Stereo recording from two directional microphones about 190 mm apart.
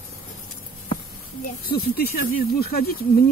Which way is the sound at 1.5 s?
50° left (ahead or behind).